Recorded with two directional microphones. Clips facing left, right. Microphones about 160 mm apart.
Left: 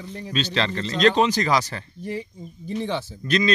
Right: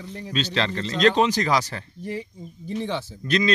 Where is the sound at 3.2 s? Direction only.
5° right (ahead or behind).